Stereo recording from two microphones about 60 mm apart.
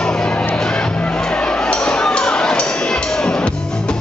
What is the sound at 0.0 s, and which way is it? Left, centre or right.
Music, centre.